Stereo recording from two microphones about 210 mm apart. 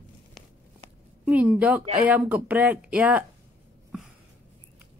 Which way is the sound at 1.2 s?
5° right (ahead or behind).